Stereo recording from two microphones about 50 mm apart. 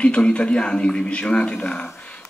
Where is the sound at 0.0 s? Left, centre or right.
Left.